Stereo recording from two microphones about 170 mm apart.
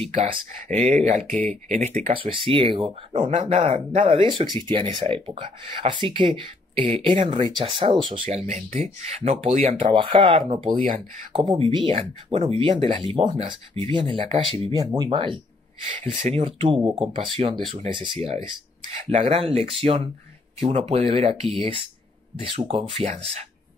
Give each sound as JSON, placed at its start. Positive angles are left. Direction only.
{"t": 0.1, "sound": "speech", "side_deg": -40}
{"t": 1.3, "sound": "speech", "side_deg": 10}
{"t": 1.8, "sound": "speech", "side_deg": -45}
{"t": 8.3, "sound": "speech", "side_deg": -40}
{"t": 9.8, "sound": "speech", "side_deg": -30}